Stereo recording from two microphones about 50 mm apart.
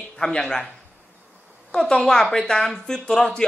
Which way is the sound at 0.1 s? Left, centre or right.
Centre.